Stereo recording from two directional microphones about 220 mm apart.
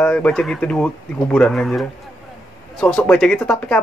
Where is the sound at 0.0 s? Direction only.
5° left (ahead or behind).